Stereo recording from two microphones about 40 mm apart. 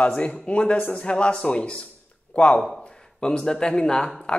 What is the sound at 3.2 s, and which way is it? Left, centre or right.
Speech, left.